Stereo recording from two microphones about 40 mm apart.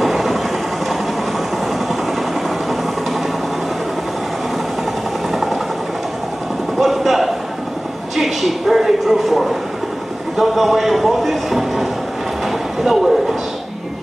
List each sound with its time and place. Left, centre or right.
0.0 s train: centre
5.3 s vehicle: centre
6.8 s a sound: centre
10.3 s speech: centre
12.4 s train: centre